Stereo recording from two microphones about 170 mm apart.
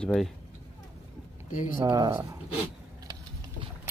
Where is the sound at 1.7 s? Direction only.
20° right (ahead or behind).